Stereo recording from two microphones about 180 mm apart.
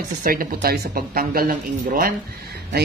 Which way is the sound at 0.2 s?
50° right (ahead or behind).